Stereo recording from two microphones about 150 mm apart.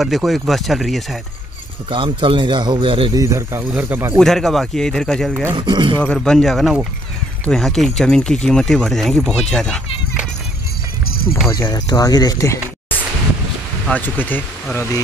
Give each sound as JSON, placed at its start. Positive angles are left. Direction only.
{"t": 0.0, "sound": "speech", "side_deg": 0}
{"t": 1.9, "sound": "speech", "side_deg": -35}
{"t": 3.2, "sound": "speech", "side_deg": -20}
{"t": 4.2, "sound": "speech", "side_deg": 0}
{"t": 5.5, "sound": "speech", "side_deg": -35}
{"t": 6.1, "sound": "speech", "side_deg": 0}
{"t": 11.5, "sound": "speech", "side_deg": 25}